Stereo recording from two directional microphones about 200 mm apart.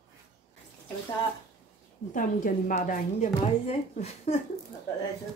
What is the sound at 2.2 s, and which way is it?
A woman's voice, 40° left (ahead or behind).